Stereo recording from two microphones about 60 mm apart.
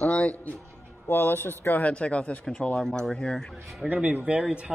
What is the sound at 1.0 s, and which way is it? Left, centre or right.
Speech, left.